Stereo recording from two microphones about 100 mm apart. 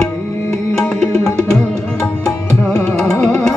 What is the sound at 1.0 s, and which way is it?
Music, 5° left (ahead or behind).